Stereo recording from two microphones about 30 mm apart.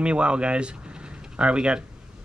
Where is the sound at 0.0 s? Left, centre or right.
Right.